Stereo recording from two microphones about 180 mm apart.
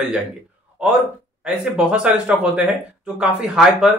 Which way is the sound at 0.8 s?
5° right (ahead or behind).